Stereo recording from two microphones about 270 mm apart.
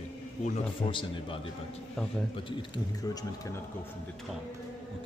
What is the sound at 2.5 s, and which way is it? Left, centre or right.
Speech, centre.